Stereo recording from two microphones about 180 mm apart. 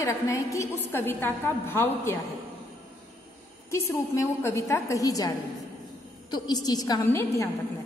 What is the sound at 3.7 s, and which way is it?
A woman's voice, 15° left (ahead or behind).